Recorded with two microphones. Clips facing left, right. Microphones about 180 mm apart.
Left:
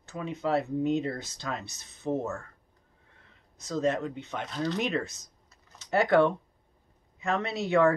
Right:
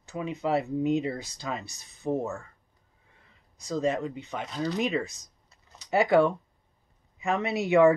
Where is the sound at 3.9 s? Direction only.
10° right (ahead or behind).